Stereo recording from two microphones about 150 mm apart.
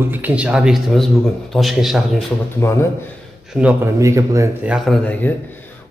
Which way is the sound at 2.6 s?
15° left (ahead or behind).